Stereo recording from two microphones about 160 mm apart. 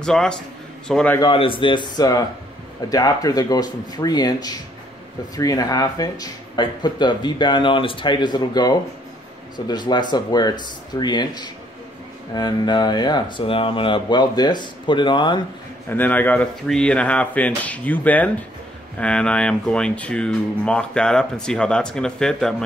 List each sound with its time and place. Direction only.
0.0 s speech: 5° left (ahead or behind)
1.2 s speech: 35° left (ahead or behind)
15.9 s speech: 10° left (ahead or behind)